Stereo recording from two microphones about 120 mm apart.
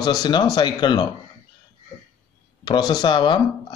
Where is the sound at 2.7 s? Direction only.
35° left (ahead or behind).